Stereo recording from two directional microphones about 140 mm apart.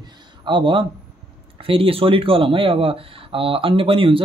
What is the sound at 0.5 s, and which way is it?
Speech, 35° right (ahead or behind).